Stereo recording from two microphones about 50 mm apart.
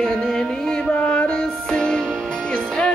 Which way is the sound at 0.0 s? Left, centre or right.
Centre.